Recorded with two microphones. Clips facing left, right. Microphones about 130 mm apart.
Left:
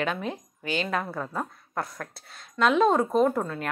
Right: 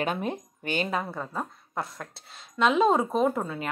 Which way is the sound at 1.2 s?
Centre (ahead or behind).